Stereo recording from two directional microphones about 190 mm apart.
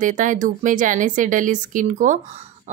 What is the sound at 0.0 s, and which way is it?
A woman's voice, 40° right (ahead or behind).